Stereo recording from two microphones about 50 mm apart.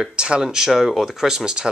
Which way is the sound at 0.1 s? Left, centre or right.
Centre.